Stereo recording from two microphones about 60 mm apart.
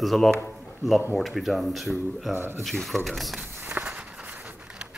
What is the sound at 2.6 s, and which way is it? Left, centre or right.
Speech, centre.